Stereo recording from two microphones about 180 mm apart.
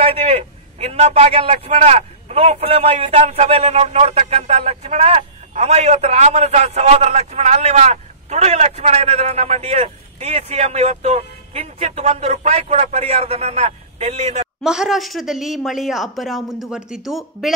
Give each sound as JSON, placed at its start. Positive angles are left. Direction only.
{"t": 0.0, "sound": "a man's voice", "side_deg": -30}
{"t": 14.6, "sound": "speech", "side_deg": -5}